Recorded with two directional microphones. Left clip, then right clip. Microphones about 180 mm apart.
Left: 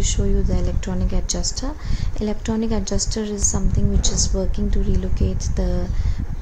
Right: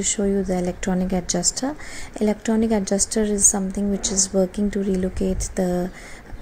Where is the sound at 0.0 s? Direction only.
15° right (ahead or behind).